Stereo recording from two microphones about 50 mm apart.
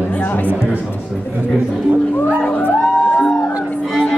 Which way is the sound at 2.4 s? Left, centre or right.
Left.